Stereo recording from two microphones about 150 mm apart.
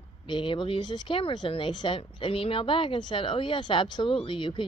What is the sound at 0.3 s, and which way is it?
Speech, 30° left (ahead or behind).